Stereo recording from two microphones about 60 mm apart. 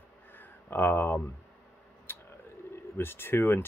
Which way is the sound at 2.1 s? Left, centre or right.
Left.